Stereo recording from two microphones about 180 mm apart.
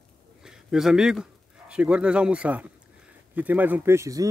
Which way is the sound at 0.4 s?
5° right (ahead or behind).